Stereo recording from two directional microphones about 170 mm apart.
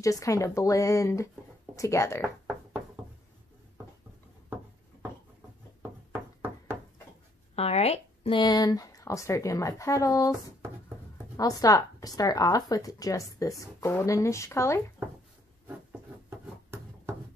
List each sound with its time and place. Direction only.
0.0 s speech: 20° left (ahead or behind)
5.8 s knock: 15° right (ahead or behind)
7.5 s speech: 35° left (ahead or behind); by 10.3 s 20° left (ahead or behind)
11.3 s speech: 20° left (ahead or behind)
16.3 s a sound: 15° right (ahead or behind)